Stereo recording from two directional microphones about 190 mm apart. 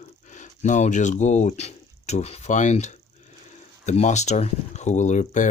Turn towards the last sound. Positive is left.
turn(degrees=40)  # may be behind; listen again after turning